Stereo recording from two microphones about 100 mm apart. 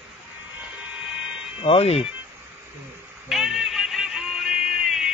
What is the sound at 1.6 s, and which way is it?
Speech, 80° left.